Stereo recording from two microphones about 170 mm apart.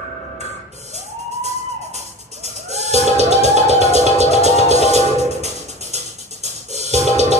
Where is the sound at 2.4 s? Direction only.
40° right (ahead or behind).